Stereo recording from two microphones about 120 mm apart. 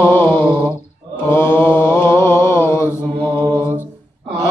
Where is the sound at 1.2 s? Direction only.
20° left (ahead or behind).